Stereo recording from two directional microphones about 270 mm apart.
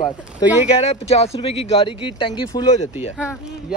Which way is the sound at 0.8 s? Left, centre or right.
Left.